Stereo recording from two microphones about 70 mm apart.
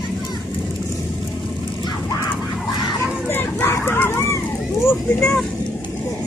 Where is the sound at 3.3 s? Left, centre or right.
Left.